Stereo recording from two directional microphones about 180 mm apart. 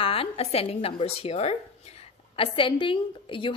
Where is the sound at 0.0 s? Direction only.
30° left (ahead or behind).